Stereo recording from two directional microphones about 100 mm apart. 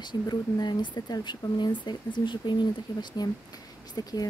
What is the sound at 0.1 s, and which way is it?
Speech, 45° left (ahead or behind).